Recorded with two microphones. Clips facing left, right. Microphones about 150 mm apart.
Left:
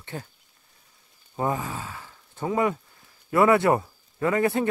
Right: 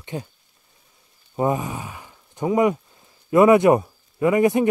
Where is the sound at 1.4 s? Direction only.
20° right (ahead or behind).